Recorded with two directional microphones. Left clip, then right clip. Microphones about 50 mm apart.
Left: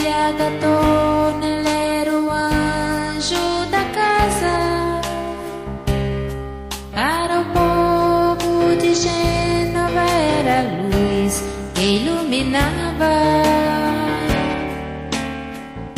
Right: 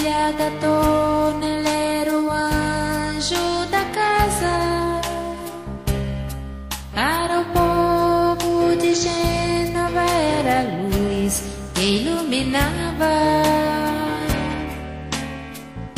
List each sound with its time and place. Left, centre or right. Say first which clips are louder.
0.0 s music: left 2 dB; centre
0.7 s music: left 2 dB; right
1.2 s music: left 2 dB; centre
2.4 s music: left 2 dB; right
7.0 s music: left 2 dB; right
7.5 s music: left 2 dB; centre
8.1 s music: left 2 dB; right
12.3 s music: left 2 dB; right; by 14.3 s centre
14.3 s music: left 5 dB; right